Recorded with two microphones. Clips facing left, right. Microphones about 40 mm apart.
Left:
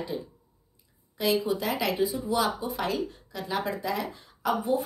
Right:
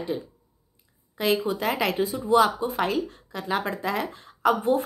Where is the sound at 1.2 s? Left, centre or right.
Right.